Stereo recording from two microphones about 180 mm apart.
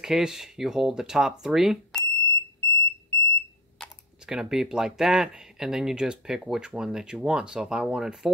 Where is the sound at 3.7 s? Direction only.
Centre (ahead or behind).